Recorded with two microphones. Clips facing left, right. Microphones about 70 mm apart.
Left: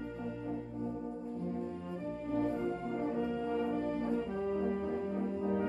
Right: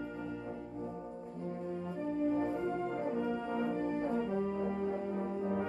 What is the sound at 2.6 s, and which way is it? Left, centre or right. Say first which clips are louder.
Music: even; centre.